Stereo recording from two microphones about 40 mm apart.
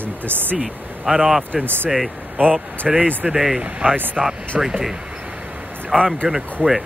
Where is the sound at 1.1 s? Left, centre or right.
Centre.